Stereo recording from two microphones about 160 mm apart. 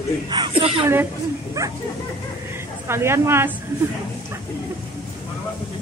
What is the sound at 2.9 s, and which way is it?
Speech, 15° right (ahead or behind).